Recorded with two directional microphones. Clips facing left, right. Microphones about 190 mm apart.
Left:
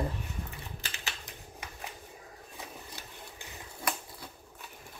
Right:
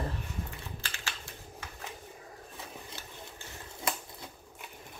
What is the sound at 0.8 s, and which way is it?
Typing, 20° left (ahead or behind).